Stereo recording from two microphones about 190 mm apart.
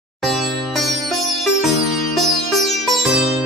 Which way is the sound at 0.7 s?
Centre (ahead or behind).